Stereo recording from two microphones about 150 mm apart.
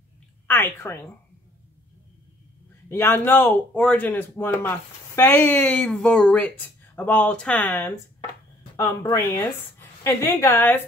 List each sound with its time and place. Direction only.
0.5 s speech: 15° left (ahead or behind)
2.9 s speech: 15° left (ahead or behind)
9.1 s speech: 15° left (ahead or behind)